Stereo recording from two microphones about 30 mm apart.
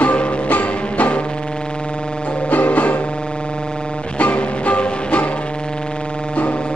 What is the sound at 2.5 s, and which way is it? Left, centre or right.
Music, left.